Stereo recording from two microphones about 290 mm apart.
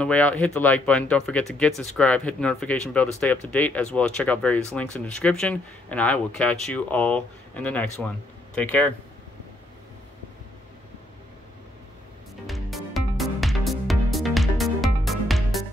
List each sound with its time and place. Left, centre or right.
0.0 s speech: centre
12.4 s music: centre